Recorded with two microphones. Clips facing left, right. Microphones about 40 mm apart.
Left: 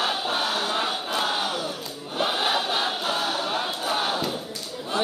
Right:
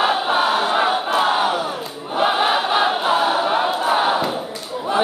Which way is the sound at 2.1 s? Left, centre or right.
Right.